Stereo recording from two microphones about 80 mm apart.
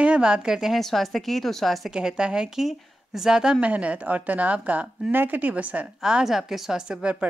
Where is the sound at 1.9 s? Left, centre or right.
Centre.